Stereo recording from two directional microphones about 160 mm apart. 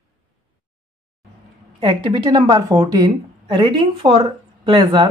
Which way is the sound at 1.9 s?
25° right (ahead or behind).